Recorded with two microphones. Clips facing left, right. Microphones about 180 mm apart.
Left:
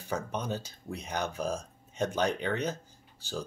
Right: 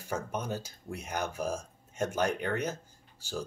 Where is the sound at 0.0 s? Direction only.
10° right (ahead or behind).